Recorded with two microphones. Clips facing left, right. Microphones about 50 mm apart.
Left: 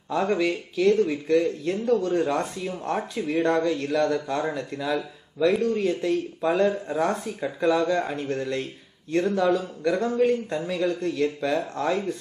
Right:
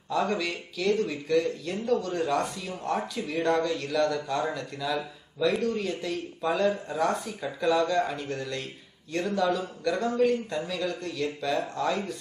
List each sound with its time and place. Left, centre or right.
0.1 s a man's voice: centre